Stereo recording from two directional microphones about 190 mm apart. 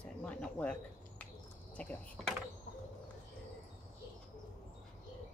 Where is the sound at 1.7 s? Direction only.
5° left (ahead or behind).